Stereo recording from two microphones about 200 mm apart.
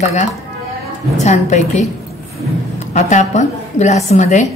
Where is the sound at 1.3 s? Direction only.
35° left (ahead or behind).